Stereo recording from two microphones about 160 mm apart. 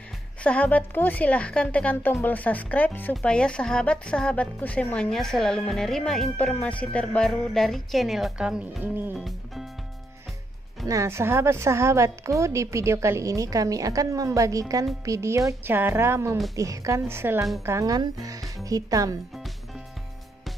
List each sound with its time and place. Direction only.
0.4 s a woman's voice: 10° left (ahead or behind); by 9.2 s 10° right (ahead or behind)
10.9 s a woman's voice: 20° right (ahead or behind)